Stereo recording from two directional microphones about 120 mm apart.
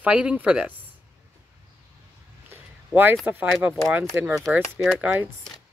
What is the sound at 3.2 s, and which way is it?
Speech, 15° right (ahead or behind).